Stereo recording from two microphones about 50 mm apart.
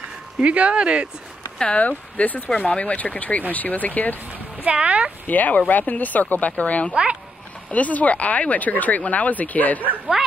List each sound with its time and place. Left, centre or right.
0.4 s speech: right
1.8 s speech: left
2.5 s speech: centre; by 4.2 s left
4.3 s speech: right
5.2 s speech: left
6.9 s speech: right
7.7 s speech: left